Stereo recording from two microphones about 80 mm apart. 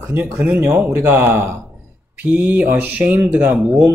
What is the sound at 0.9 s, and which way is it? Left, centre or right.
Speech, right.